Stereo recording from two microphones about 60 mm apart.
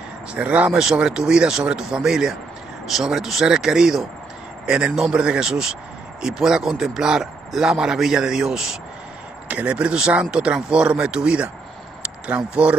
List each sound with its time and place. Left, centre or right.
0.3 s speech: right
9.5 s speech: right